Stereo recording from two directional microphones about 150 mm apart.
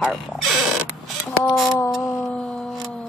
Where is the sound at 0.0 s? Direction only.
Centre (ahead or behind).